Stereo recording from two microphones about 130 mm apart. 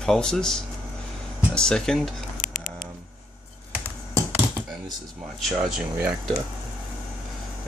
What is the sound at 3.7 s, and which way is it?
Computer keyboard, 15° right (ahead or behind).